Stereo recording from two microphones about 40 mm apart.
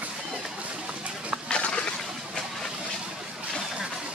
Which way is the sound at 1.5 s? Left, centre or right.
Left.